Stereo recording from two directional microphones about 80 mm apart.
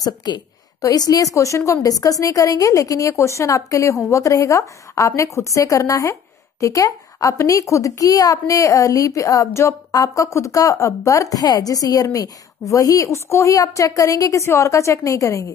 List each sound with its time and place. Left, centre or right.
0.0 s a woman's voice: left